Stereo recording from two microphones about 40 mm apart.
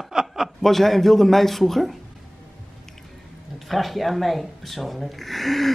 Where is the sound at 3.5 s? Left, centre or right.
Centre.